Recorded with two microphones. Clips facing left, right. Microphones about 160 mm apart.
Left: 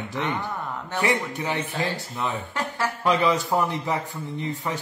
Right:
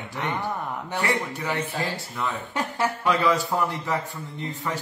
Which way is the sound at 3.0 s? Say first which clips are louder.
Left 2 dB; 20° left (ahead or behind).